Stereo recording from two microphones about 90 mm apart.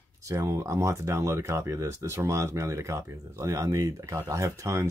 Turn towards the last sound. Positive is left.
turn(degrees=-35)  # may be behind; listen again after turning